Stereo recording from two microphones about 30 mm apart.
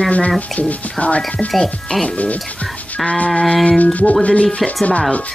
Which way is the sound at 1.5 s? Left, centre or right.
Centre.